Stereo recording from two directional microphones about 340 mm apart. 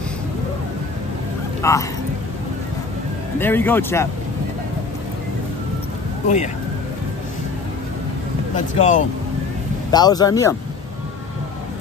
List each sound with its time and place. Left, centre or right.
1.6 s speech: centre
3.3 s speech: centre
6.2 s speech: left
8.5 s speech: left